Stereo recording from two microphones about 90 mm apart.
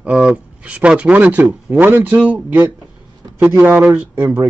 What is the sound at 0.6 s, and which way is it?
A man's voice, 15° right (ahead or behind).